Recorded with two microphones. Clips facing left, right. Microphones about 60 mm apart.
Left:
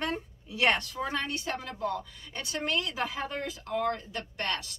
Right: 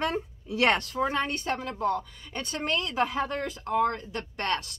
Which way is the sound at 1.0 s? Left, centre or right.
Right.